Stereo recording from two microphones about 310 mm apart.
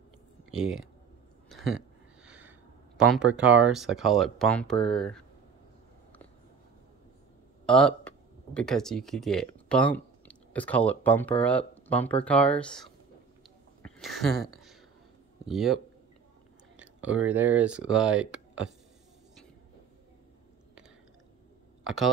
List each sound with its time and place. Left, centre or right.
0.5 s speech: centre
1.5 s a sound: centre
3.0 s speech: centre
7.6 s speech: centre
13.8 s a sound: centre
15.4 s speech: centre
21.8 s speech: centre